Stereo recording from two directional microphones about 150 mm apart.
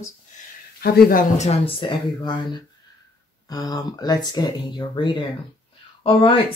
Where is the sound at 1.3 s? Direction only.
45° left (ahead or behind).